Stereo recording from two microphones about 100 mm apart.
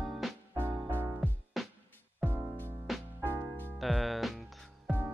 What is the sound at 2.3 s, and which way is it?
Music, 20° right (ahead or behind).